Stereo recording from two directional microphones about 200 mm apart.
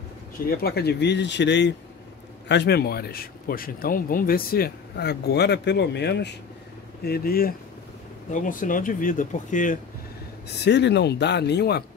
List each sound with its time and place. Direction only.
0.5 s speech: 50° left (ahead or behind)
10.6 s speech: 60° left (ahead or behind)